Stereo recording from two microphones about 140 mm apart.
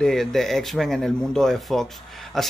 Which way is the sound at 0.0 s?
5° left (ahead or behind).